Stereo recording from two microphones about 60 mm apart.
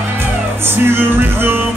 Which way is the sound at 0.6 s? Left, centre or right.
Right.